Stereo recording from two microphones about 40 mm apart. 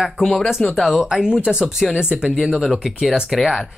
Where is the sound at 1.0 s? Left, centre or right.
Right.